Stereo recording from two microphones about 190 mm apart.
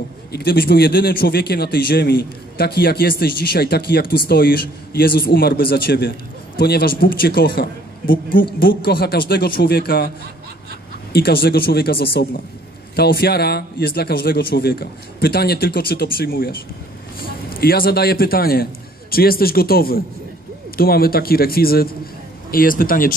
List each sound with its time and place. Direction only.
0.3 s a man's voice: 55° left (ahead or behind)
11.1 s a man's voice: 55° left (ahead or behind)
17.6 s a man's voice: 50° left (ahead or behind)